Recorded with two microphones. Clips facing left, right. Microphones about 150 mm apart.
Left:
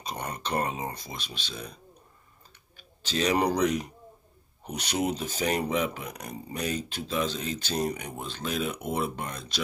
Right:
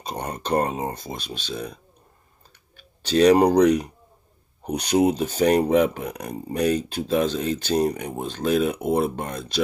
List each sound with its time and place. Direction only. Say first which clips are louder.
0.1 s speech: right 7 dB; 40° right (ahead or behind)
3.1 s speech: right 10 dB; 45° right (ahead or behind)
5.0 s speech: right 8 dB; 50° right (ahead or behind)